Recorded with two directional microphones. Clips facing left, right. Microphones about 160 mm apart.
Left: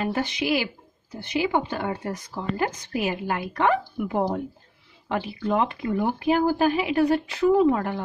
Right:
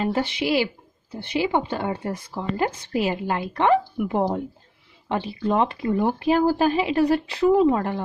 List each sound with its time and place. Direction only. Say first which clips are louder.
0.0 s speech: right 2 dB; 25° right (ahead or behind)